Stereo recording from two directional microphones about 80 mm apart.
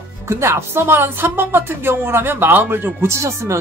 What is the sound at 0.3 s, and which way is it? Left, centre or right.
Speech, right.